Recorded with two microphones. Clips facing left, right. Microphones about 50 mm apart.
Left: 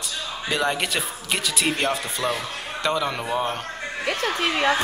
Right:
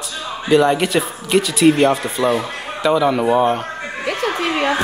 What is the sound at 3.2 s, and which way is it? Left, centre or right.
Speech, centre.